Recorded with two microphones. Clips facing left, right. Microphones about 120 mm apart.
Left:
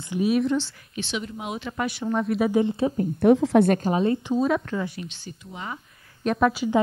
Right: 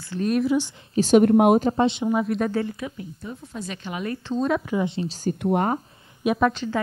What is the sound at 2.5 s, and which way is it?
Speech, 25° left (ahead or behind).